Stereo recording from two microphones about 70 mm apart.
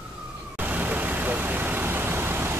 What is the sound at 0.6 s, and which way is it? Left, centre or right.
Vehicle, right.